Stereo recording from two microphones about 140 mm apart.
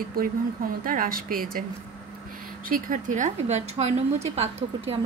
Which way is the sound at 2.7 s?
70° right (ahead or behind).